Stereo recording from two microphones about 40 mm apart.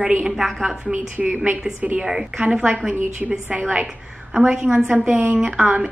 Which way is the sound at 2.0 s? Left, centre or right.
Centre.